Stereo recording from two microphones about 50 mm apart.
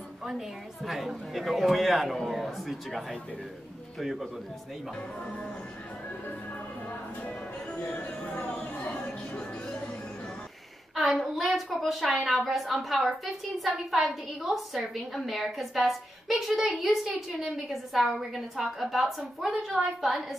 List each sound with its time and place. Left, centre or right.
0.8 s a woman's voice: centre
4.0 s a woman's voice: centre
8.5 s a sound: left
11.1 s a woman's voice: centre